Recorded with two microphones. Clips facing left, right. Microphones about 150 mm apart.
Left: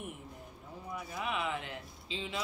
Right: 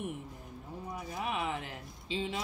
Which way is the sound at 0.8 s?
40° right (ahead or behind).